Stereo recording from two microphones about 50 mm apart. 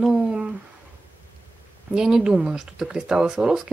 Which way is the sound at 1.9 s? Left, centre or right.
Centre.